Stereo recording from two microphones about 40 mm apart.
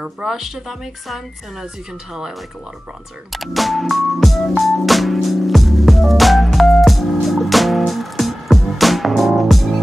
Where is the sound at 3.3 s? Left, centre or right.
Centre.